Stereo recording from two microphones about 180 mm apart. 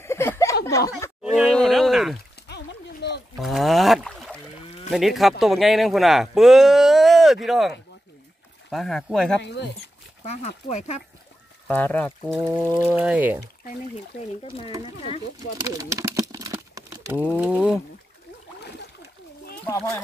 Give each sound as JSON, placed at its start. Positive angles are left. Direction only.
{"t": 0.0, "sound": "a sound", "side_deg": 15}
{"t": 0.7, "sound": "speech", "side_deg": 15}
{"t": 1.2, "sound": "groan", "side_deg": 0}
{"t": 2.4, "sound": "a sound", "side_deg": 65}
{"t": 3.3, "sound": "a sound", "side_deg": 0}
{"t": 4.9, "sound": "speech", "side_deg": 0}
{"t": 9.4, "sound": "speech", "side_deg": 70}
{"t": 10.2, "sound": "speech", "side_deg": 35}
{"t": 11.6, "sound": "speech", "side_deg": 10}
{"t": 12.4, "sound": "speech", "side_deg": -15}
{"t": 15.3, "sound": "crumpling", "side_deg": -20}
{"t": 17.4, "sound": "speech", "side_deg": -10}
{"t": 19.6, "sound": "speech", "side_deg": 10}